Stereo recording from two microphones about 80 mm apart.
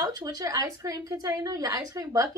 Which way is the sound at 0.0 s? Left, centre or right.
Right.